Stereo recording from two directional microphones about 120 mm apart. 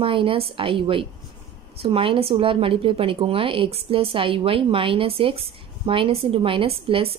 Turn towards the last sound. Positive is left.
turn(degrees=-55)  # may be behind; listen again after turning